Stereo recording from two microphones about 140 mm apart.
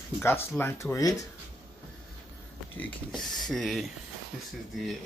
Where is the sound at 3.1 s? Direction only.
5° left (ahead or behind).